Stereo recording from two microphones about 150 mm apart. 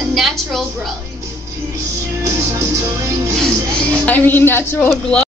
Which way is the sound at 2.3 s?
20° right (ahead or behind).